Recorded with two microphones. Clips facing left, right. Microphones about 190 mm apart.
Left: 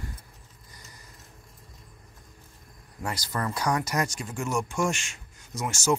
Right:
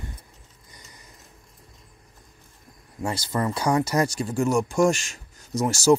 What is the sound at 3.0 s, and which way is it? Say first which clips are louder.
Speech: right 5 dB; 25° right (ahead or behind).